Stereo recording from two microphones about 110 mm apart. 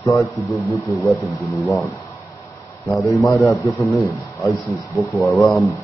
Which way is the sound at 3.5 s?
30° left (ahead or behind).